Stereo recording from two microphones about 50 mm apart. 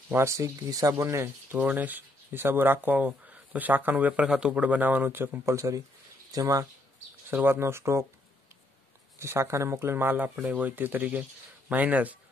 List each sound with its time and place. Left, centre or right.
0.2 s speech: right
1.6 s speech: right
5.4 s speech: right
7.2 s speech: right
9.2 s speech: right
9.8 s speech: right
10.1 s speech: right